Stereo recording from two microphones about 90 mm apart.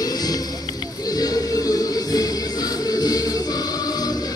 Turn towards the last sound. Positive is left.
turn(degrees=45)  # may be behind; listen again after turning